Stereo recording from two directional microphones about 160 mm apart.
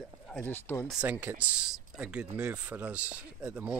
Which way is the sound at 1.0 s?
10° right (ahead or behind).